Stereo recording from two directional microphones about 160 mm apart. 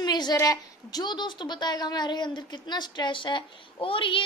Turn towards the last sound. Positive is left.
turn(degrees=35)  # may be behind; listen again after turning